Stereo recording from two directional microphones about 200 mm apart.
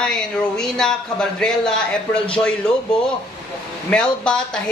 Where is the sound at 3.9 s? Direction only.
5° left (ahead or behind).